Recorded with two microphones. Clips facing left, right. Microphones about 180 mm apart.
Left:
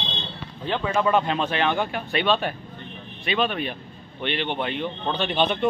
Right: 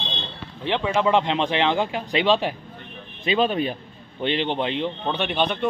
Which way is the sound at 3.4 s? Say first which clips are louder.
Right 3 dB; 35° right (ahead or behind).